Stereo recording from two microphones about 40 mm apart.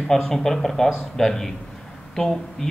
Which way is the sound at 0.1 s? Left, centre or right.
Centre.